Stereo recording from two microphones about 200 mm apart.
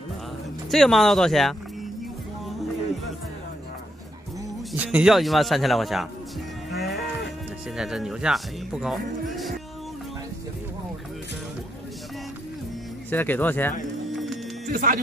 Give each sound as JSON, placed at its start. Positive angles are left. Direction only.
{"t": 0.7, "sound": "speech", "side_deg": 0}
{"t": 4.7, "sound": "speech", "side_deg": -5}
{"t": 7.7, "sound": "speech", "side_deg": 0}
{"t": 13.1, "sound": "speech", "side_deg": 10}
{"t": 14.7, "sound": "speech", "side_deg": -45}